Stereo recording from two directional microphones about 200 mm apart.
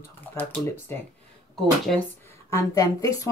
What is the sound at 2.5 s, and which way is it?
Speech, 15° left (ahead or behind).